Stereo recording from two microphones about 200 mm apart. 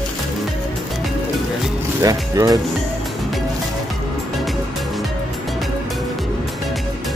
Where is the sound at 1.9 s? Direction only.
15° right (ahead or behind).